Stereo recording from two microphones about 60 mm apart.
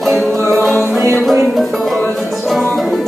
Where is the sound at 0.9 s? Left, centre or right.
Right.